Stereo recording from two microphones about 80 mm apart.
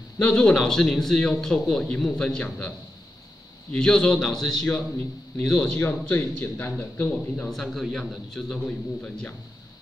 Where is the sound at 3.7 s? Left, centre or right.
Centre.